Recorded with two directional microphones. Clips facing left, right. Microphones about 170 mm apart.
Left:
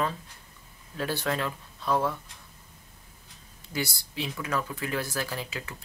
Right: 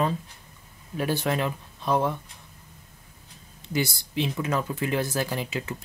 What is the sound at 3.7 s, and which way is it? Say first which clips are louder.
Speech: right 6 dB; 20° right (ahead or behind).